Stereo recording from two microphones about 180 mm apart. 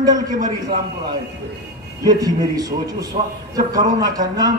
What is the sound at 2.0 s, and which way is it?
A man's voice, 20° right (ahead or behind).